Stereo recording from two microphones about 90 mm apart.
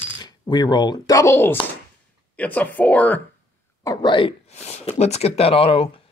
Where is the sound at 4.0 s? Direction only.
60° left (ahead or behind).